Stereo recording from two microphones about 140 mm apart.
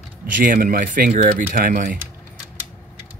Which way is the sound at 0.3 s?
80° right.